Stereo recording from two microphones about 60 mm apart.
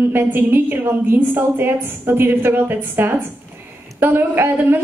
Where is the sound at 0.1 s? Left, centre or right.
Right.